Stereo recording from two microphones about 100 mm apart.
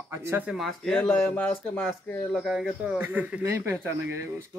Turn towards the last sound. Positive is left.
turn(degrees=-20)  # may be behind; listen again after turning